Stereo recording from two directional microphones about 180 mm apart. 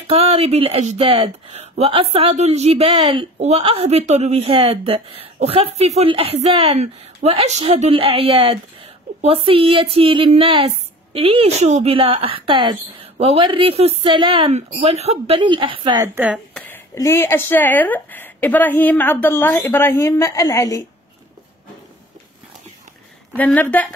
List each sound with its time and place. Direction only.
0.1 s speech: 35° right (ahead or behind)
16.5 s speech: 10° left (ahead or behind)
23.3 s speech: 10° left (ahead or behind)